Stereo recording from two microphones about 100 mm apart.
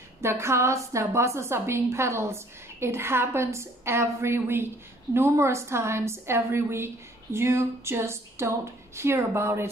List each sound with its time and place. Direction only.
0.2 s a woman's voice: 25° right (ahead or behind)